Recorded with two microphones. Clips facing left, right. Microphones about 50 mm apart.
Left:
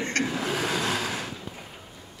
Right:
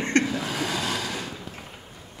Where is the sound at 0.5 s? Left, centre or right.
Centre.